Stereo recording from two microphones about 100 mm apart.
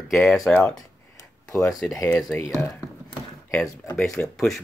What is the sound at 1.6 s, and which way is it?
Speech, centre (ahead or behind).